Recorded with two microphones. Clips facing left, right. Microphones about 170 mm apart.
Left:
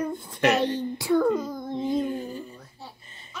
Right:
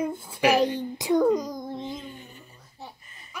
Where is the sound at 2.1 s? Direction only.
35° left (ahead or behind).